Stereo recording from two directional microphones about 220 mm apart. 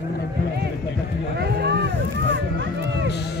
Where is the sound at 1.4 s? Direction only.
50° right (ahead or behind).